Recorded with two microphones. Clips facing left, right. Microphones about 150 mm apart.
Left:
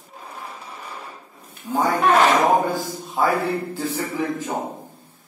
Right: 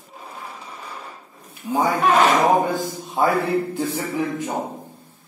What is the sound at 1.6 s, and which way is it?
A man's voice, 10° right (ahead or behind).